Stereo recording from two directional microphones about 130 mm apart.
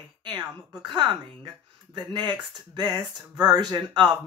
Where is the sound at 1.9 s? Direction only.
35° right (ahead or behind).